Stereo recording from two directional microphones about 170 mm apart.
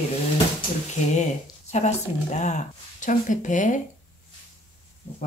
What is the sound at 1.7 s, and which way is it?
Speech, 40° left (ahead or behind).